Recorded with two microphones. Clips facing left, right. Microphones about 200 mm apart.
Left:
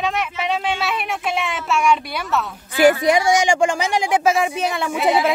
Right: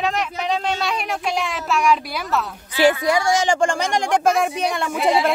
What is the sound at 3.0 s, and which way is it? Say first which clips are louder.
Speech: left 3 dB; 20° left (ahead or behind).